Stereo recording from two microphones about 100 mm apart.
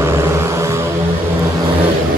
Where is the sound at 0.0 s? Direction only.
25° right (ahead or behind).